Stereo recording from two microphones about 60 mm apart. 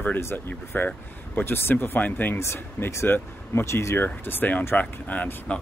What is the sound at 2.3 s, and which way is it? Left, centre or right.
Speech, left.